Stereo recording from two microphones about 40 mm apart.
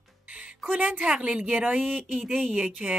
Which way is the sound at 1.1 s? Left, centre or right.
Right.